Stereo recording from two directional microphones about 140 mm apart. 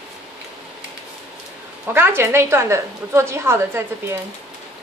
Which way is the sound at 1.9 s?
15° right (ahead or behind).